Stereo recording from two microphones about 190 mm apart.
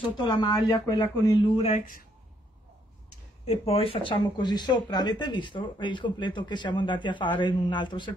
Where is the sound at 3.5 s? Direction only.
30° left (ahead or behind).